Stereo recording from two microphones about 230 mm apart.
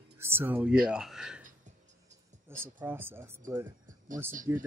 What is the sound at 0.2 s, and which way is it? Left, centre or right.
Speech, centre.